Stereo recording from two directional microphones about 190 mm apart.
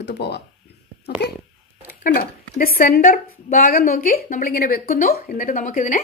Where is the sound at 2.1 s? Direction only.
45° left (ahead or behind).